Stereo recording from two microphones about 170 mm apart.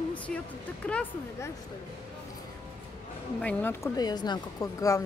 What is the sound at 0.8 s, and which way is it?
Speech, 10° left (ahead or behind).